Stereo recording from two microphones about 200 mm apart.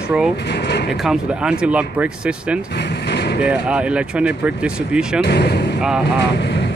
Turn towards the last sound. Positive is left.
turn(degrees=60)  # may be behind; listen again after turning